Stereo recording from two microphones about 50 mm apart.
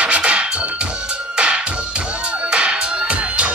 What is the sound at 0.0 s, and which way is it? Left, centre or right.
Music, right.